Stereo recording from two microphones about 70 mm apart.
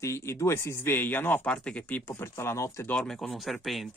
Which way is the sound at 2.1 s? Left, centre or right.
Left.